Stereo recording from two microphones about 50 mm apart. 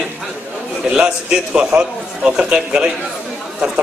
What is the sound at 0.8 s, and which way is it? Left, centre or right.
A man's voice, right.